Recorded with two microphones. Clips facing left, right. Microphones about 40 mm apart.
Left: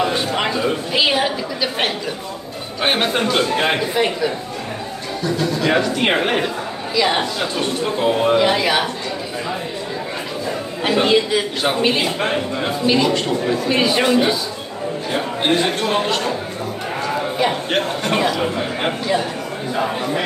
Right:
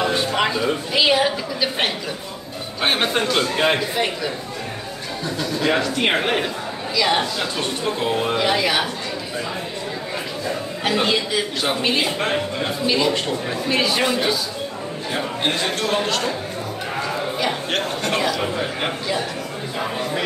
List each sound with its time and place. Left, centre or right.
0.0 s a woman's voice: centre
3.0 s a man's voice: centre
5.7 s a man's voice: centre
10.8 s a man's voice: centre
17.6 s a man's voice: centre